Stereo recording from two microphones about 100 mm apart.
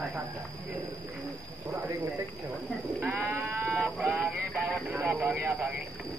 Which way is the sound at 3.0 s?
15° right (ahead or behind).